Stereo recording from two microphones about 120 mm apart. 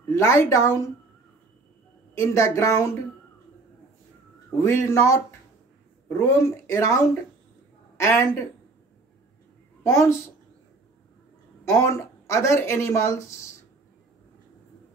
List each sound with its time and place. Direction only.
0.1 s speech: 20° left (ahead or behind)
2.1 s speech: 25° left (ahead or behind)
4.6 s speech: 20° left (ahead or behind)
8.0 s speech: 20° left (ahead or behind)
9.8 s speech: 25° left (ahead or behind)
11.7 s speech: 25° left (ahead or behind)